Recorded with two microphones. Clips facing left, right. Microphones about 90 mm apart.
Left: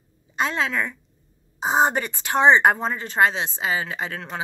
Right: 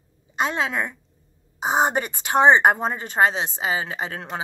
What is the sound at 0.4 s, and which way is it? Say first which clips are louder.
Speech: even; 20° right (ahead or behind).